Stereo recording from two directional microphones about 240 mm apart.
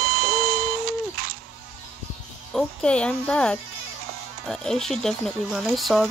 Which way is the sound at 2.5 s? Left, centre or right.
Centre.